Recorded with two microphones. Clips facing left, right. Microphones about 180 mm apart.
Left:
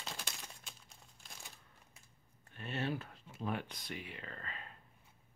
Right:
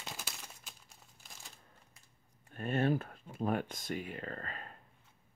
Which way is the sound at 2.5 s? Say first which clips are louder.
Right 7 dB; 50° right (ahead or behind).